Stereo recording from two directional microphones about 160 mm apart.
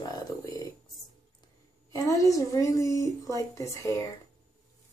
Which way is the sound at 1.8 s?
20° left (ahead or behind).